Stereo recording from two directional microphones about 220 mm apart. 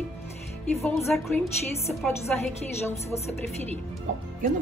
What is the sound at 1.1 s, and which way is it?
Speech, 5° left (ahead or behind).